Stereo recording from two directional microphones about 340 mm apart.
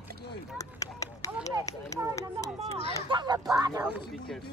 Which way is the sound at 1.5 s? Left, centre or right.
Centre.